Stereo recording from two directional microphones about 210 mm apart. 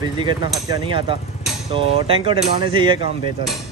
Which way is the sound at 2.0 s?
25° right (ahead or behind).